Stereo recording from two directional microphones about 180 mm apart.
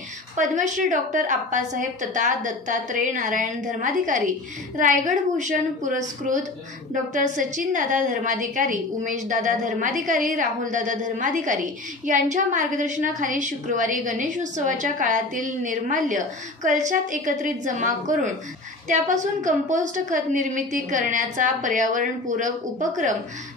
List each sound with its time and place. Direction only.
0.4 s a woman's voice: 45° right (ahead or behind)